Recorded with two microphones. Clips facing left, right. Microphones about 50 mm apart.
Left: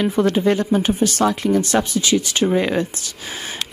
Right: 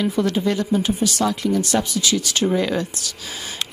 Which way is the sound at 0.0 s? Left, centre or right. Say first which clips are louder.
Left 3 dB; left.